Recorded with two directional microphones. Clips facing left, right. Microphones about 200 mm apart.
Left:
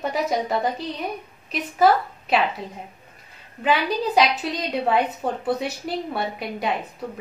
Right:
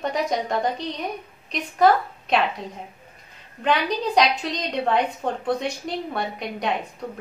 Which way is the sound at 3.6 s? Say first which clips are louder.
Left 1 dB; 5° left (ahead or behind).